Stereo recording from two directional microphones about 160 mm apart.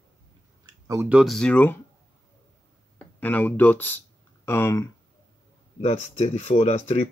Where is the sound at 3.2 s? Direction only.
10° left (ahead or behind).